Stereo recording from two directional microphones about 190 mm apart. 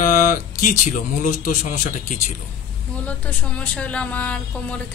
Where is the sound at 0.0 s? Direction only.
45° left (ahead or behind).